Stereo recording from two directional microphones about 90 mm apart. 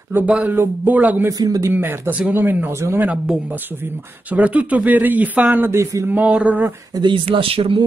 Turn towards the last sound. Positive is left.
turn(degrees=-90)